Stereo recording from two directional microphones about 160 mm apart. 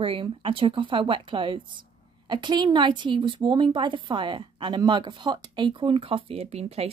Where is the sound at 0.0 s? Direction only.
35° right (ahead or behind).